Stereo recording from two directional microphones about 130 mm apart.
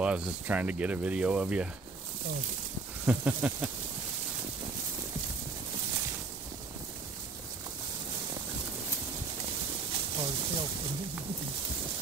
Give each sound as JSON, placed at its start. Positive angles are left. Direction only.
{"t": 0.0, "sound": "speech", "side_deg": -10}
{"t": 3.1, "sound": "speech", "side_deg": -10}
{"t": 10.1, "sound": "speech", "side_deg": -40}